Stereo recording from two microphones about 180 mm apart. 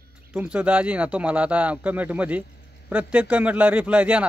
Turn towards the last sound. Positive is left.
turn(degrees=-5)  # may be behind; listen again after turning